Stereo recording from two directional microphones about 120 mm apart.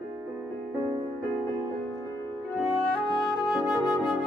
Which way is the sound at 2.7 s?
45° left (ahead or behind).